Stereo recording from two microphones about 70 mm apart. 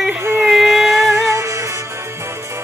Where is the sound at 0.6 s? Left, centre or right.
Centre.